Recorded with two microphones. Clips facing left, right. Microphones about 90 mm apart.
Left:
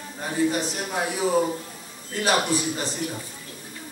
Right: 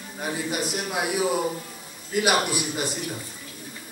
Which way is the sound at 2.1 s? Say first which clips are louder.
Right 4 dB; 10° right (ahead or behind).